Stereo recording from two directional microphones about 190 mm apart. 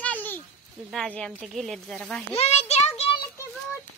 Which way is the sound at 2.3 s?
35° left (ahead or behind).